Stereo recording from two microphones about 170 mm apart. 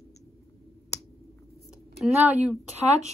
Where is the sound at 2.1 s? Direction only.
10° right (ahead or behind).